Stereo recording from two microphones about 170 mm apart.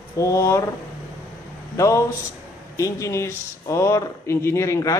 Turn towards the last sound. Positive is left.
turn(degrees=20)  # may be behind; listen again after turning